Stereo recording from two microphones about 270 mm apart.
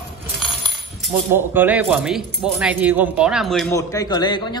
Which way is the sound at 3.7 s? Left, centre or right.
Centre.